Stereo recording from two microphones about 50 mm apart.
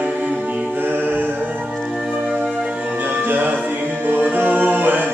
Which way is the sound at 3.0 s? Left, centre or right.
Right.